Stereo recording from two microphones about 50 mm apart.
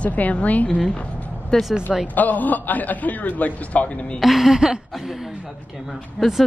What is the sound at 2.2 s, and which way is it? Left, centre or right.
A man's voice, left.